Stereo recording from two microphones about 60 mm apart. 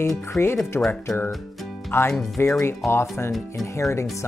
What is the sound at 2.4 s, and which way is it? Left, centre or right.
Speech, left.